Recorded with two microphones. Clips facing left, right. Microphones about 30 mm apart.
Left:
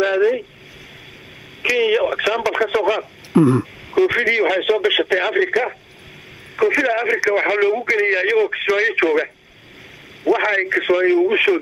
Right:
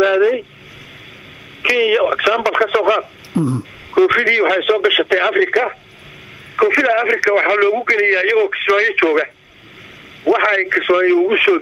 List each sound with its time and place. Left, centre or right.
0.0 s vehicle: centre
1.6 s a sound: centre
2.6 s speech: centre
7.3 s speech: centre